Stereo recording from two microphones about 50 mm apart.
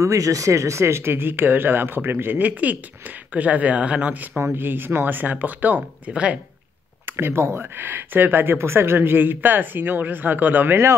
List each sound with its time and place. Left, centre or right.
0.0 s speech: right
2.4 s speech: right
4.6 s speech: right
7.1 s speech: right